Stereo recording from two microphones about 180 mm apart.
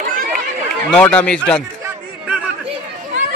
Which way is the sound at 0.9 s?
5° left (ahead or behind).